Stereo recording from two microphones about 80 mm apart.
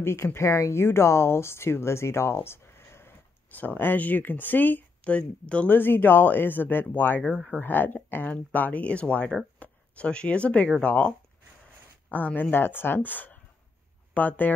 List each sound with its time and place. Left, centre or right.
0.0 s speech: left
7.2 s speech: centre
7.5 s speech: left